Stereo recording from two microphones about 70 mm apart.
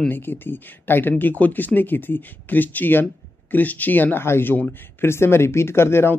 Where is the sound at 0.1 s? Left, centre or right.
Left.